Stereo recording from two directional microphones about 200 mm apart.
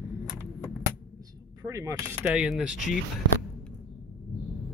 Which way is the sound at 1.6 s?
15° right (ahead or behind).